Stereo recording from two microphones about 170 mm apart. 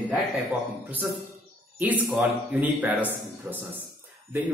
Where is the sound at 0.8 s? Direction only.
10° right (ahead or behind).